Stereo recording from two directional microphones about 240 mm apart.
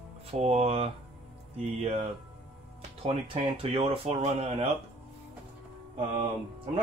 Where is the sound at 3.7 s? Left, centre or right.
Right.